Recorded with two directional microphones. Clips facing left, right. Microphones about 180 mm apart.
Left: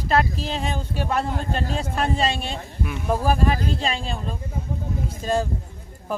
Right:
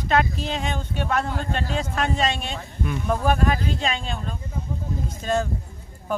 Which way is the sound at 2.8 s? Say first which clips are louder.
Even; 5° left (ahead or behind).